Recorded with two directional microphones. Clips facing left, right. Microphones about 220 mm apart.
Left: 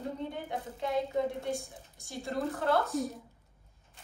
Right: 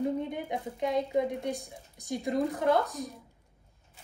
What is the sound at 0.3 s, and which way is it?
A woman's voice, 15° right (ahead or behind).